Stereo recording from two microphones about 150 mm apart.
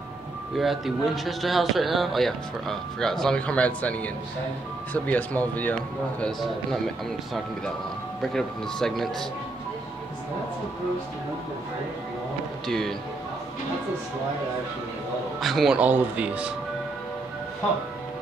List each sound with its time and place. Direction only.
0.6 s speech: centre (ahead or behind)
8.2 s speech: 5° left (ahead or behind)
12.6 s speech: 5° left (ahead or behind)
15.4 s speech: centre (ahead or behind)